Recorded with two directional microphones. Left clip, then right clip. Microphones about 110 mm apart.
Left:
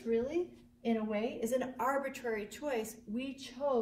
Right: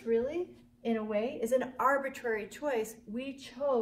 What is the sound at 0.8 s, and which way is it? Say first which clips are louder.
A woman's voice: right 3 dB; 30° right (ahead or behind).